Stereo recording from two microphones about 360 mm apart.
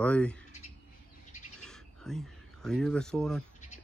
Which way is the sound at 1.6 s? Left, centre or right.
Centre.